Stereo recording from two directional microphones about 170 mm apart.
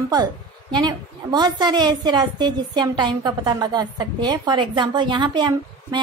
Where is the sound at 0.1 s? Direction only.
25° right (ahead or behind).